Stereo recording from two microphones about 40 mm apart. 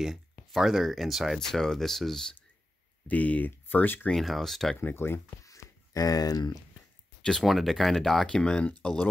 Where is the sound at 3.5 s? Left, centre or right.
Left.